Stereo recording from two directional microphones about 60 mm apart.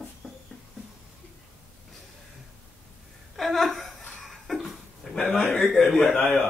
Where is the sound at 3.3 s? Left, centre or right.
Centre.